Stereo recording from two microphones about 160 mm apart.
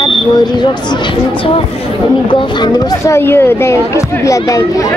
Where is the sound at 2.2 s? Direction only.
30° left (ahead or behind).